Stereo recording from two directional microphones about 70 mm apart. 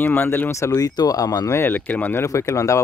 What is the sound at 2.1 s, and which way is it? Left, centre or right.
Speech, left.